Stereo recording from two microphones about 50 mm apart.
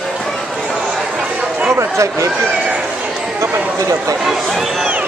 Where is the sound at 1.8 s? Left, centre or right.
Right.